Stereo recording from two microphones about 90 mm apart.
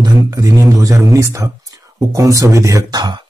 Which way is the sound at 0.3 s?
40° right (ahead or behind).